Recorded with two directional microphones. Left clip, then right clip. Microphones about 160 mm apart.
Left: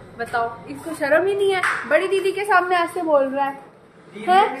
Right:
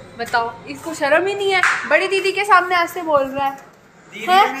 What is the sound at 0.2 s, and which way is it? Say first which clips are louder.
Speech: right 3 dB; 20° right (ahead or behind).